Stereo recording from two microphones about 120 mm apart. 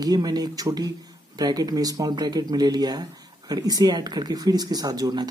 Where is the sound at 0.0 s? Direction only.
35° right (ahead or behind).